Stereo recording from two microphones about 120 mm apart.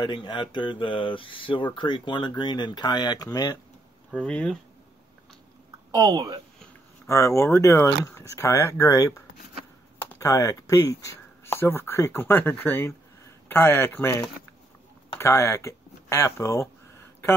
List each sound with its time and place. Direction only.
0.0 s speech: 40° left (ahead or behind)
4.1 s speech: 10° left (ahead or behind)
5.9 s speech: 30° right (ahead or behind)
7.1 s speech: 25° left (ahead or behind)
15.1 s speech: 25° left (ahead or behind)